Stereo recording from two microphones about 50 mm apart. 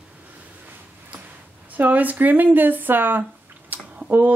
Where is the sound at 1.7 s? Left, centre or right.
Right.